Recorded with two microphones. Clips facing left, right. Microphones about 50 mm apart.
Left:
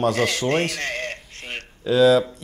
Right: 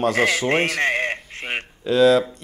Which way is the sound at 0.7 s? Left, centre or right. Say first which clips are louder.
Right 7 dB; right.